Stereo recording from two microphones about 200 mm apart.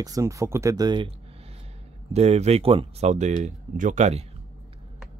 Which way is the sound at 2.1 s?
30° right (ahead or behind).